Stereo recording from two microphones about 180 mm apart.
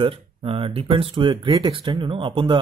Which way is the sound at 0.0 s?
30° right (ahead or behind).